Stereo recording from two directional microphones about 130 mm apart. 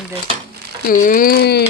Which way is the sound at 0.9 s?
90° left.